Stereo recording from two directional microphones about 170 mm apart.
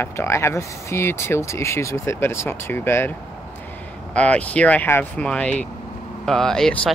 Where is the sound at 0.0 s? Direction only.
15° left (ahead or behind).